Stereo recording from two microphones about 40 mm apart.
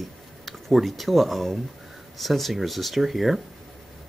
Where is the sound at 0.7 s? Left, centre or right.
Centre.